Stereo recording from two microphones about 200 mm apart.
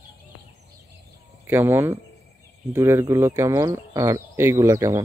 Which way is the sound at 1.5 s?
10° right (ahead or behind).